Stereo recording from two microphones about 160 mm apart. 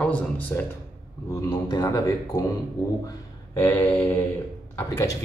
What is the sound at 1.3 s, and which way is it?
Speech, 25° left (ahead or behind).